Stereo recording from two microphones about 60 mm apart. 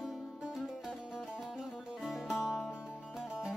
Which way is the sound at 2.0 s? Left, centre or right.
Centre.